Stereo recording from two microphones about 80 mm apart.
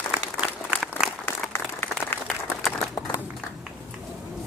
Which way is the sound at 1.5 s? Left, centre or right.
Left.